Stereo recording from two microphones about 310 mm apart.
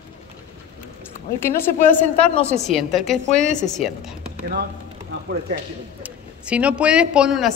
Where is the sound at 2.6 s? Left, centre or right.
Centre.